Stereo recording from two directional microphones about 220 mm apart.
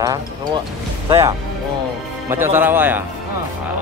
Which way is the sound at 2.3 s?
10° right (ahead or behind).